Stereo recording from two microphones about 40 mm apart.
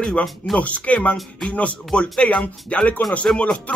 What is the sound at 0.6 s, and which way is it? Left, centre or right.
Speech, left.